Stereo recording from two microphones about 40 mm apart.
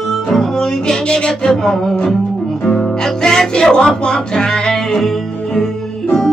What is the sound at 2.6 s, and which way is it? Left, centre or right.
Music, centre.